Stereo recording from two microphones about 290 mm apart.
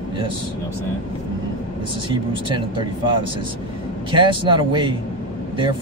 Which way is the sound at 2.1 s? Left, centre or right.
Centre.